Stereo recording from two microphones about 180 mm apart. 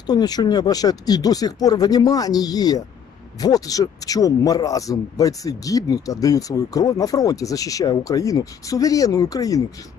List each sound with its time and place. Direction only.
0.0 s a man's voice: 20° left (ahead or behind)